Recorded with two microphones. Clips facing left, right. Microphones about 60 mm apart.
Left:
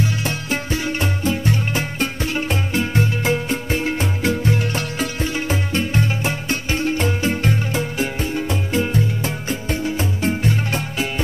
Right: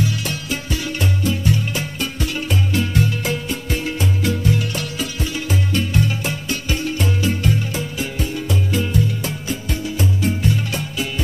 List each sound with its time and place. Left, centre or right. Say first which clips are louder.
0.2 s music: left 2 dB; left